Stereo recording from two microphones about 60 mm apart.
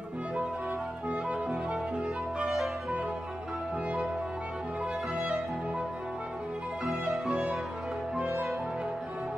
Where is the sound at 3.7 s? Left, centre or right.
Right.